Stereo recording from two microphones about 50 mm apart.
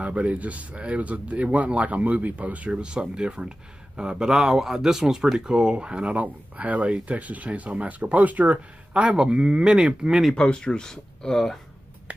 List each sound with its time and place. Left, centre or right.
0.0 s speech: right
10.3 s speech: centre